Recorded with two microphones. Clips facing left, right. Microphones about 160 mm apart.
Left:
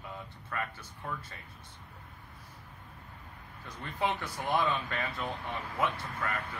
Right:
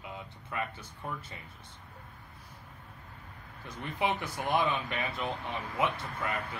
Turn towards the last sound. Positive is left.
turn(degrees=-20)  # may be behind; listen again after turning